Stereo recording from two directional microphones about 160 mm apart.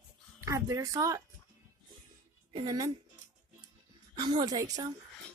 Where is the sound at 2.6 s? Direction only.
25° right (ahead or behind).